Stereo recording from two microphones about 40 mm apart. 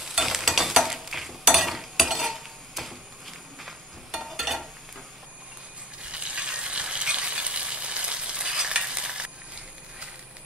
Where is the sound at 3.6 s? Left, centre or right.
Centre.